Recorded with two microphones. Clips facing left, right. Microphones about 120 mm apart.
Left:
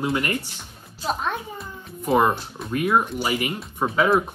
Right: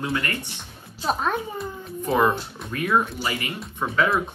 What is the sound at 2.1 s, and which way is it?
Speech, 30° left (ahead or behind).